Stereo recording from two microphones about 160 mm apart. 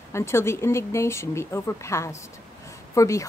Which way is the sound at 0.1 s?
15° left (ahead or behind).